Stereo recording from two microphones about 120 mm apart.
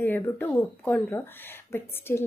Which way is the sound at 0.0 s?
15° left (ahead or behind).